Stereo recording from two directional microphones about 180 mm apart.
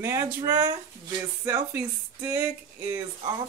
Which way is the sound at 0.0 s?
15° right (ahead or behind).